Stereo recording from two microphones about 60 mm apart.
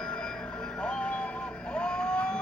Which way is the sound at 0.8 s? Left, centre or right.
Centre.